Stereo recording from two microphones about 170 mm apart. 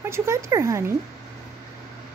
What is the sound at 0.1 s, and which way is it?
Speech, 15° right (ahead or behind).